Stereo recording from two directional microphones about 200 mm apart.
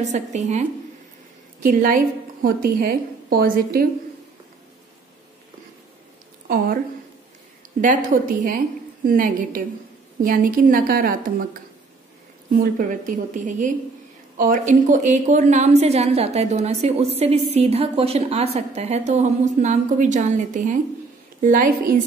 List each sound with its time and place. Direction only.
0.0 s a woman's voice: 35° right (ahead or behind)
6.4 s a woman's voice: 45° right (ahead or behind)
7.8 s a woman's voice: 40° right (ahead or behind)
12.6 s a woman's voice: 40° right (ahead or behind)